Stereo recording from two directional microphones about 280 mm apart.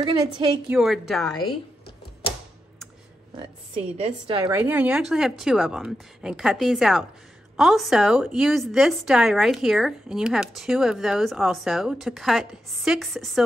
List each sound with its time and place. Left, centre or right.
0.0 s a woman's voice: centre
0.7 s a woman's voice: centre
3.3 s a woman's voice: centre
4.6 s a woman's voice: centre